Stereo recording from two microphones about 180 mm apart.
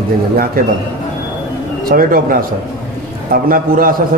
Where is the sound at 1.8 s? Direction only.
50° right (ahead or behind).